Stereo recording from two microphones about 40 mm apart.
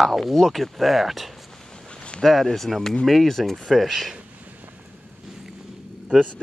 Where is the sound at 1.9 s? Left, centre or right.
Left.